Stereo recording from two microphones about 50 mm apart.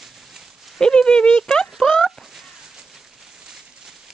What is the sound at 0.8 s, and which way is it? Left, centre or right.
Speech, centre.